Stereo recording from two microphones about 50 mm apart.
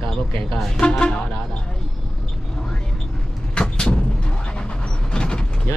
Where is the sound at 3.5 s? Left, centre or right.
Centre.